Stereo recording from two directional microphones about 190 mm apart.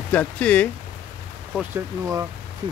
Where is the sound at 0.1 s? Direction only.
5° left (ahead or behind).